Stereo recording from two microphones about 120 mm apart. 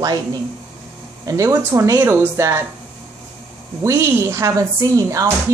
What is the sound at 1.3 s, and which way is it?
Speech, 25° right (ahead or behind).